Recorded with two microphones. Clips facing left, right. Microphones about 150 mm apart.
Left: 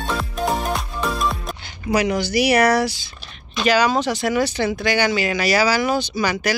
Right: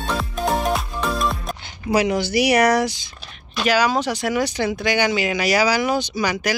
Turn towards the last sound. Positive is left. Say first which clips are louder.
# left 1 dB
turn(degrees=-15)  # may be behind; listen again after turning